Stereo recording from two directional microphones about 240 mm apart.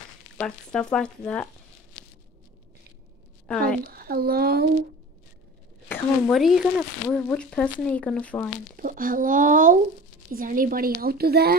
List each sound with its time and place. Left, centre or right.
0.4 s speech: centre
3.4 s speech: centre
3.9 s a woman's voice: right
5.9 s speech: centre
8.7 s a woman's voice: right